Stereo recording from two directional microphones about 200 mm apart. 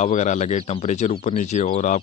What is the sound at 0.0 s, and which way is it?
Speech, 35° left (ahead or behind).